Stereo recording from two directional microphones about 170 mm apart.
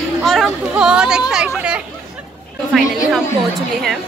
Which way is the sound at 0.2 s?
Centre (ahead or behind).